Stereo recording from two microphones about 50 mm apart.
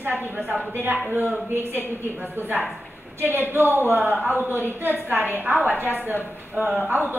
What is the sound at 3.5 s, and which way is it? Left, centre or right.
A woman's voice, right.